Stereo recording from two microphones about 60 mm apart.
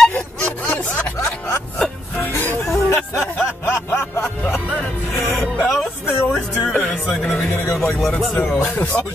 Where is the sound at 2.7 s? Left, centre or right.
Left.